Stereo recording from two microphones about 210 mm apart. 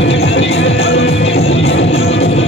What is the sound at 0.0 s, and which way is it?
Music, 65° left (ahead or behind).